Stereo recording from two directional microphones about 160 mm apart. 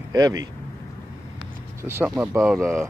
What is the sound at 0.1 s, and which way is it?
Speech, 25° right (ahead or behind).